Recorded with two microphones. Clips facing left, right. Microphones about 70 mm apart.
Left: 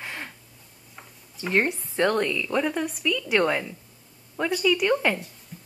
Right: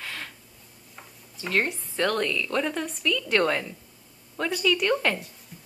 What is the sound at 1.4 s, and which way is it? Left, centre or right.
A woman's voice, centre.